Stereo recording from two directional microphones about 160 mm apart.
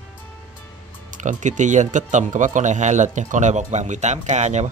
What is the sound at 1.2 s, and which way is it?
Speech, 50° right (ahead or behind).